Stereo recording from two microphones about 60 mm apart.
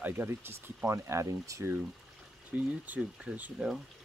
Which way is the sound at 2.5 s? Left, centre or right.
Right.